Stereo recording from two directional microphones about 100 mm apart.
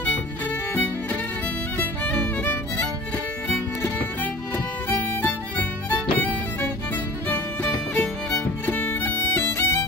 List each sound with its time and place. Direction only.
1.8 s music: 15° left (ahead or behind)
4.8 s music: 20° left (ahead or behind)